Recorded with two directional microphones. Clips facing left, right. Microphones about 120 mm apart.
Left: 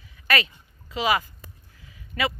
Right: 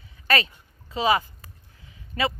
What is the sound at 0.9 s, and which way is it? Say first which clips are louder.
Speech: right 2 dB; 30° right (ahead or behind).